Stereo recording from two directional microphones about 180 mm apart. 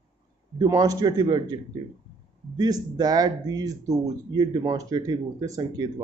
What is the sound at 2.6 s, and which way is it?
Speech, 20° right (ahead or behind).